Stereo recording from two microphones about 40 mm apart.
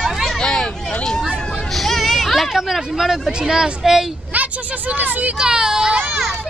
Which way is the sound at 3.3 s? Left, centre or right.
Centre.